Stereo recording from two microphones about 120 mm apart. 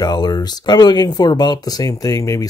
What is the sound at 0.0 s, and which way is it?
Speech, 35° left (ahead or behind).